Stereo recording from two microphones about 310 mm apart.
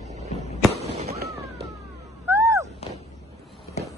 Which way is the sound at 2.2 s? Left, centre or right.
Centre.